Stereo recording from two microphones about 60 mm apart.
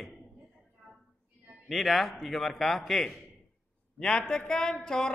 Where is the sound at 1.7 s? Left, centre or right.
Centre.